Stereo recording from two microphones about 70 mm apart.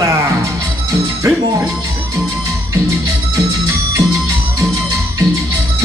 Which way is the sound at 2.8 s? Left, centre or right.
Right.